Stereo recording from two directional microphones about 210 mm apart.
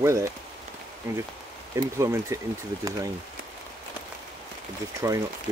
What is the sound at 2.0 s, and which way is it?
Speech, 15° right (ahead or behind).